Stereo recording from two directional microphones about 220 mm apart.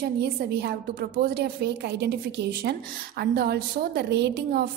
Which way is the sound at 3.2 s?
45° right (ahead or behind).